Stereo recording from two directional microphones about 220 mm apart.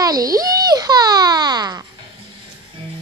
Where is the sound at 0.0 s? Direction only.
15° right (ahead or behind).